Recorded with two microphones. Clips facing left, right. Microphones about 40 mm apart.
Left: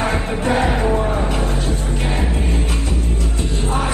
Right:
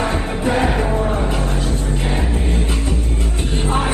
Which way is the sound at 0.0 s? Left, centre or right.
Left.